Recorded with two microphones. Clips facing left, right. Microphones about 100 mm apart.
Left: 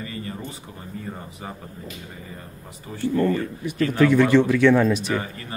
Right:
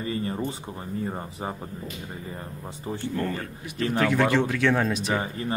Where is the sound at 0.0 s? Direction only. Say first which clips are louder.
Right 4 dB; 30° right (ahead or behind).